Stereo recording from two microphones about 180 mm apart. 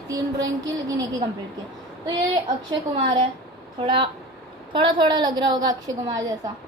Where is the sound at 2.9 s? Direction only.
30° right (ahead or behind).